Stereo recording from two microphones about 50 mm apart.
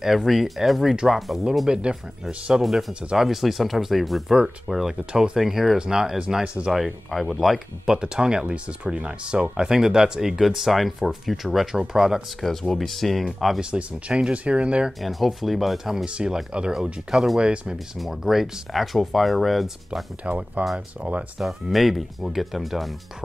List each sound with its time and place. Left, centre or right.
0.0 s speech: centre
1.7 s speech: centre
2.6 s speech: centre
2.9 s speech: right
3.2 s speech: centre
6.7 s speech: centre
12.4 s speech: centre
13.6 s speech: right
14.9 s speech: centre
17.4 s speech: centre
17.9 s speech: centre
20.2 s speech: right
21.4 s speech: centre